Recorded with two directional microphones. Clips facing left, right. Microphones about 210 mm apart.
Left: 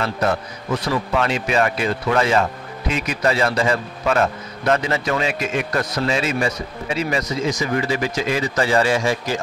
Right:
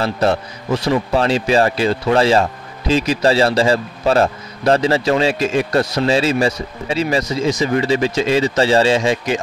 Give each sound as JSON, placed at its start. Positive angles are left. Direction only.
{"t": 0.0, "sound": "a man's voice", "side_deg": -30}